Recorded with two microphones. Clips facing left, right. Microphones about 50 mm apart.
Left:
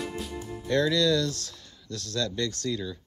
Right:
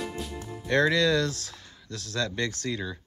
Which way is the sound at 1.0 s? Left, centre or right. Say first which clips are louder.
Even; right.